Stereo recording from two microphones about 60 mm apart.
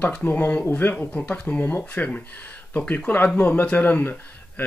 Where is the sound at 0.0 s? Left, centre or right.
Left.